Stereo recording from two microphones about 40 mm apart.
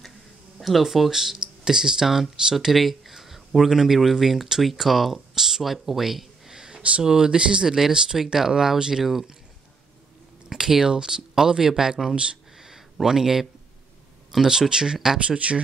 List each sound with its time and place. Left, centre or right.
0.6 s speech: centre
6.7 s a sound: right
7.0 s speech: centre
10.5 s speech: centre
12.5 s a sound: centre
14.3 s speech: centre
15.2 s speech: right